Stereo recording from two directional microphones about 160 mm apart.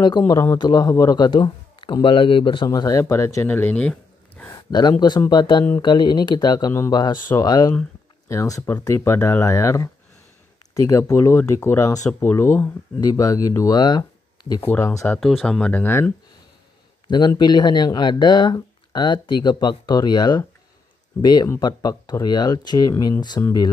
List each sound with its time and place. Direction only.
0.3 s speech: 20° left (ahead or behind)
4.6 s speech: 25° left (ahead or behind)
15.1 s speech: centre (ahead or behind)
17.1 s speech: 25° left (ahead or behind)